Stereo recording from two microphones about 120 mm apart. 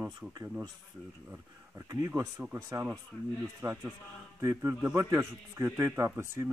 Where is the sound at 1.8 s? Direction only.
30° right (ahead or behind).